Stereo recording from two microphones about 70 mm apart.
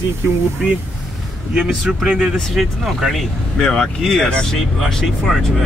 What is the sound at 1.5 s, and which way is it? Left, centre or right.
Speech, centre.